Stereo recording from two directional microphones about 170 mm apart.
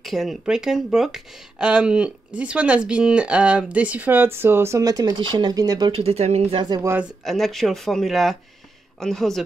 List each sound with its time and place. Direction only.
0.0 s speech: centre (ahead or behind); by 6.6 s 40° right (ahead or behind)
6.6 s speech: 25° right (ahead or behind)
7.2 s speech: centre (ahead or behind)